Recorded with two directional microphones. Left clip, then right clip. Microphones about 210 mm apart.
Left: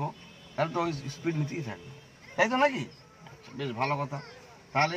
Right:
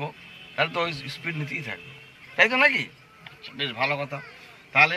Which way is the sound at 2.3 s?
30° left (ahead or behind).